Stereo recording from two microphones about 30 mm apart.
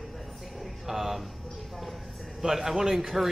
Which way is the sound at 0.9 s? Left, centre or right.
Centre.